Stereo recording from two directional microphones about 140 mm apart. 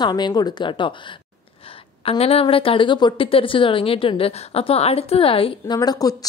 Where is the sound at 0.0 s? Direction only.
30° left (ahead or behind).